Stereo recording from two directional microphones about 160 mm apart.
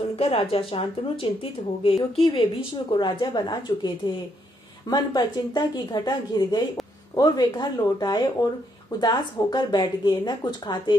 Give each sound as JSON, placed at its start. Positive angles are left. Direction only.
{"t": 0.1, "sound": "a woman's voice", "side_deg": 40}